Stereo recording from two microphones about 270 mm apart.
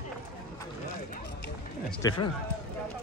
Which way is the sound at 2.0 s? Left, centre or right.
Centre.